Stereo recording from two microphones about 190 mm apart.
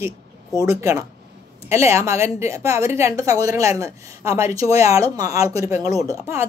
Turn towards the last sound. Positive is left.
turn(degrees=-15)  # may be behind; listen again after turning